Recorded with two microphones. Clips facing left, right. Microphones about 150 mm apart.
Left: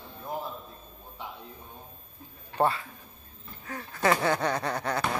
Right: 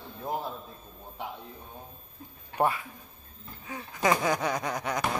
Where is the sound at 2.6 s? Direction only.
15° right (ahead or behind).